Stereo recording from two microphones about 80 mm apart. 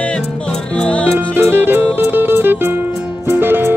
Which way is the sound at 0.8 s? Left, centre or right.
Centre.